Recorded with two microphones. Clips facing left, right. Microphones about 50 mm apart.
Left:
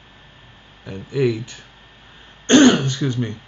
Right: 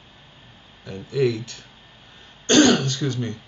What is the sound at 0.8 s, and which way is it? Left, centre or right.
Speech, centre.